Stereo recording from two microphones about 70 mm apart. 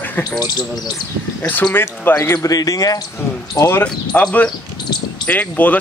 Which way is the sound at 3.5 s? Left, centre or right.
Left.